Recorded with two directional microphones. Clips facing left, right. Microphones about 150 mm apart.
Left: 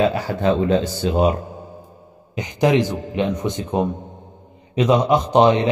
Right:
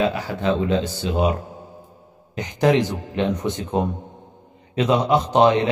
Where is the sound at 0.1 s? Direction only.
45° left (ahead or behind).